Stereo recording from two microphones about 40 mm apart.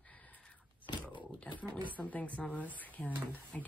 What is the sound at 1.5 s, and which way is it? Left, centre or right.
Speech, left.